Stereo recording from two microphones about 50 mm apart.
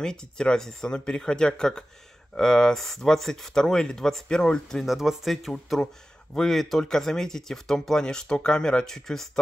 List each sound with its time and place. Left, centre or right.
0.0 s speech: centre
4.8 s speech: centre